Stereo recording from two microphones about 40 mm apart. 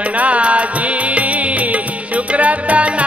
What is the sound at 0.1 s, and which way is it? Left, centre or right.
Music, right.